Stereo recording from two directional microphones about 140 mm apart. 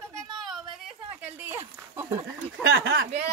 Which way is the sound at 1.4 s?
15° right (ahead or behind).